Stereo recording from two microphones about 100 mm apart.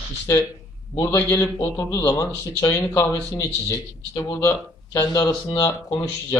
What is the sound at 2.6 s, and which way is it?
Speech, 35° left (ahead or behind).